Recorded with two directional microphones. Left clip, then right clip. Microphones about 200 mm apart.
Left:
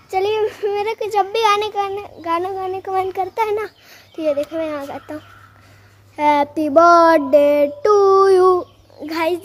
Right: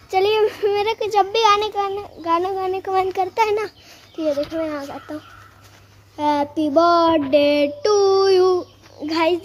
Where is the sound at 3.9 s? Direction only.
15° left (ahead or behind).